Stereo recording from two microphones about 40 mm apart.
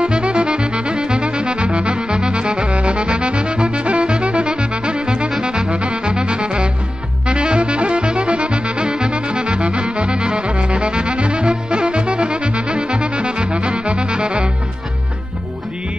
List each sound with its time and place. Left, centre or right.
0.0 s saxophone: right
5.4 s music: right
7.2 s saxophone: right